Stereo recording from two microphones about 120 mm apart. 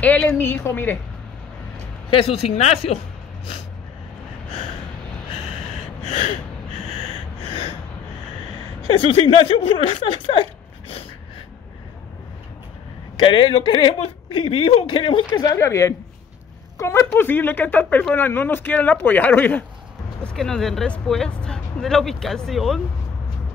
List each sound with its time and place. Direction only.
0.0 s speech: 10° left (ahead or behind)
2.0 s speech: 55° left (ahead or behind)
6.0 s gasp: 50° left (ahead or behind)
7.4 s gasp: 50° left (ahead or behind)
8.9 s speech: 50° left (ahead or behind)
13.2 s speech: 45° left (ahead or behind)
15.3 s a woman's voice: 30° left (ahead or behind); by 19.6 s 15° left (ahead or behind)
20.2 s speech: 5° left (ahead or behind)